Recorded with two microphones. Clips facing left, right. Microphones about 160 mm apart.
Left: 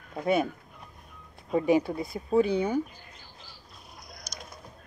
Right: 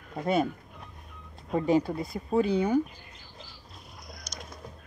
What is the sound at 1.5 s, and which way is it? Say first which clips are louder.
Speech: left 1 dB; 10° left (ahead or behind).